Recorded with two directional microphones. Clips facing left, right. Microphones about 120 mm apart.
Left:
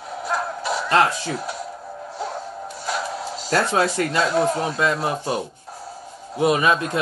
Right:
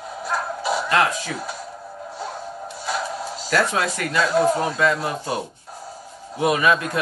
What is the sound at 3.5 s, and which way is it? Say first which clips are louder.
Speech: left 2 dB; 30° left (ahead or behind).